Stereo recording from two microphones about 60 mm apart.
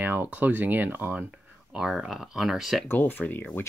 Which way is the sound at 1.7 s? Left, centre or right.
Centre.